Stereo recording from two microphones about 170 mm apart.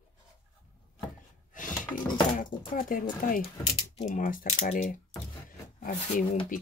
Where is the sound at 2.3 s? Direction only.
55° left (ahead or behind).